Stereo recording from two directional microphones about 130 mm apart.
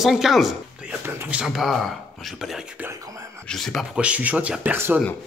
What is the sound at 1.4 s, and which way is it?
Speech, centre (ahead or behind).